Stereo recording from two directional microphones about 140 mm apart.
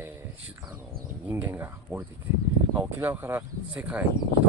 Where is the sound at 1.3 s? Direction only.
15° right (ahead or behind).